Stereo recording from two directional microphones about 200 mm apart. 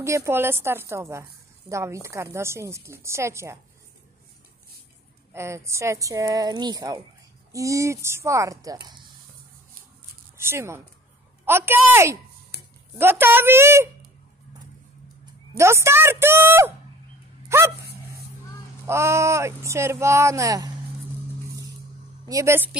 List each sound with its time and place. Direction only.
0.0 s speech: 15° right (ahead or behind)
5.3 s speech: 15° right (ahead or behind)
10.3 s speech: 10° right (ahead or behind)
12.5 s a sound: 55° left (ahead or behind)
12.9 s speech: 10° right (ahead or behind)
15.5 s speech: 15° right (ahead or behind)
17.5 s dog: 10° right (ahead or behind)
18.9 s speech: 15° right (ahead or behind)
22.3 s speech: 15° right (ahead or behind)